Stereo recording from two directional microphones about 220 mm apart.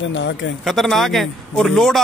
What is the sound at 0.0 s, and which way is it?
Speech, 55° left (ahead or behind).